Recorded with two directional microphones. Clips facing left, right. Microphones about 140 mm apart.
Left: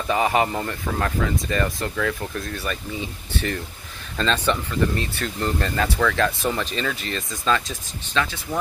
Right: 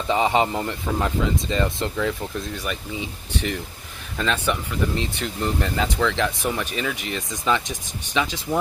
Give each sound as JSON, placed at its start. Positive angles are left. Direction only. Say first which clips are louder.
{"t": 0.1, "sound": "speech", "louder": "right 1 dB", "side_deg": -20}